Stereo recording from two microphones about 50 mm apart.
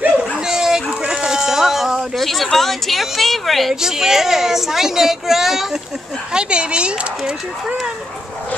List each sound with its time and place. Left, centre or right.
0.4 s dog: centre
0.8 s a sound: centre
2.1 s a woman's voice: centre
3.8 s a woman's voice: centre
6.3 s speech: centre